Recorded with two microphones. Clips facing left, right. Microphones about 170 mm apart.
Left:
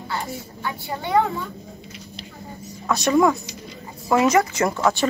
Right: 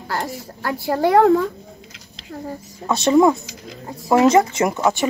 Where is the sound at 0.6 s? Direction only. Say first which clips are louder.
Right 11 dB; 80° right.